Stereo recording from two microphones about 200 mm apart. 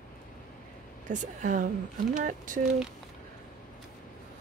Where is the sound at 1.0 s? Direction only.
40° right (ahead or behind).